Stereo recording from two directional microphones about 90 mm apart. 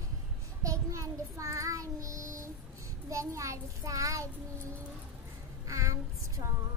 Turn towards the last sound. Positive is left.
turn(degrees=-40)  # may be behind; listen again after turning